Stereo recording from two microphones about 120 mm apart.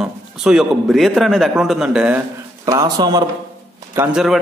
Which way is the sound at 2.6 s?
30° right (ahead or behind).